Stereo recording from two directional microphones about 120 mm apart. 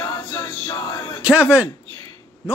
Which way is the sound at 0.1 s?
35° left (ahead or behind).